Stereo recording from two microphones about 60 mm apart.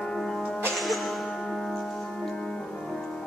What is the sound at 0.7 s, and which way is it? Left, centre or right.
Music, centre.